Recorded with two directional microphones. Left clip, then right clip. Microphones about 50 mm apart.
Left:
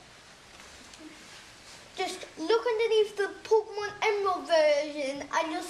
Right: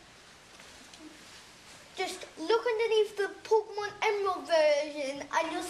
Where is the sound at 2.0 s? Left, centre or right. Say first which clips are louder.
Left 2 dB; centre.